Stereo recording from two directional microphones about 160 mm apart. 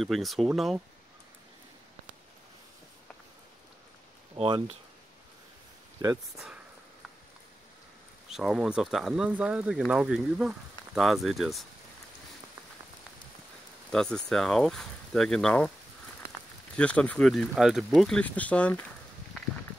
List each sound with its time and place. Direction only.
0.0 s speech: centre (ahead or behind)
4.4 s speech: 35° right (ahead or behind)
6.0 s speech: 25° right (ahead or behind)
6.3 s speech: 5° right (ahead or behind)
8.3 s speech: centre (ahead or behind)
13.9 s speech: 5° left (ahead or behind)